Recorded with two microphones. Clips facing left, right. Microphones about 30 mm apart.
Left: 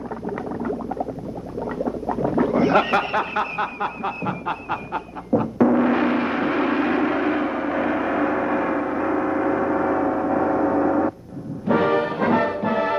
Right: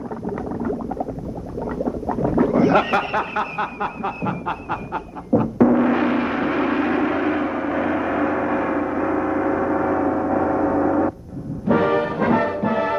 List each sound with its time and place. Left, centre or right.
1.9 s a sound: left
2.7 s snicker: centre
5.3 s music: centre
5.9 s gong: centre
11.7 s music: centre